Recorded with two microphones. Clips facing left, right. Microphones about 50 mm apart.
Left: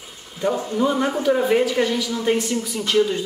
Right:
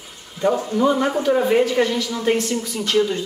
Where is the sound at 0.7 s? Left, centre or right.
Centre.